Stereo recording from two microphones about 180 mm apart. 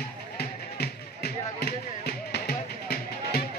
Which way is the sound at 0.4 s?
60° left (ahead or behind).